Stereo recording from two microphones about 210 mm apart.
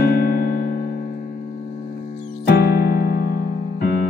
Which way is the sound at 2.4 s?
50° left (ahead or behind).